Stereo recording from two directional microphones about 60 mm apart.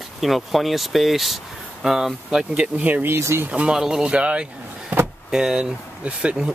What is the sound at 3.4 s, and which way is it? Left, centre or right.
Speech, right.